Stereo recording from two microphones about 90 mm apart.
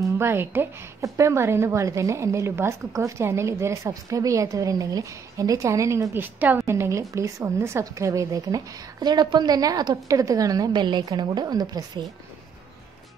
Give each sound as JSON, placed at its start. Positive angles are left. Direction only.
{"t": 0.0, "sound": "a woman's voice", "side_deg": -25}
{"t": 6.1, "sound": "a woman's voice", "side_deg": -20}
{"t": 10.7, "sound": "a woman's voice", "side_deg": -55}